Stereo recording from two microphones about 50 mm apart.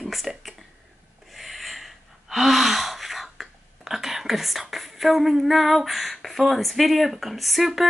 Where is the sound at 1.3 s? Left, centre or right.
Centre.